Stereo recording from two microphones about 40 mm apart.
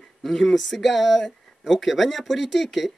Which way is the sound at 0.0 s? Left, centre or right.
Centre.